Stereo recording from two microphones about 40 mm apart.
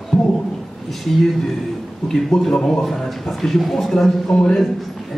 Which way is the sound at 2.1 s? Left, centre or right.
Centre.